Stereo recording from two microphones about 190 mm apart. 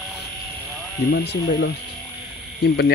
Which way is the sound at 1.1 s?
60° left (ahead or behind).